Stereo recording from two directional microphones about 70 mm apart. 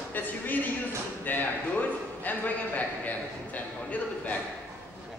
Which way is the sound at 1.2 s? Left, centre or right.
Left.